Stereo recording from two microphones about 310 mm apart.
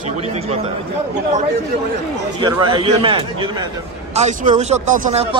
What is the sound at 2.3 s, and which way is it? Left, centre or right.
A man's voice, centre.